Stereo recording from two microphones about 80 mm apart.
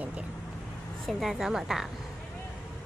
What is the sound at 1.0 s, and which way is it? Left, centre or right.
Speech, centre.